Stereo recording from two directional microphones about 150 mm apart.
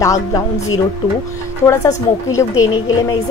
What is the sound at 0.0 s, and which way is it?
Speech, 20° left (ahead or behind).